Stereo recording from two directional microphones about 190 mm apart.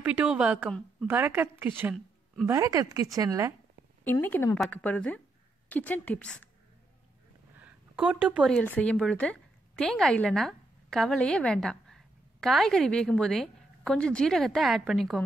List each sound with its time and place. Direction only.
0.0 s a woman's voice: 5° right (ahead or behind)
4.0 s a woman's voice: 10° left (ahead or behind)
7.6 s a woman's voice: 5° right (ahead or behind)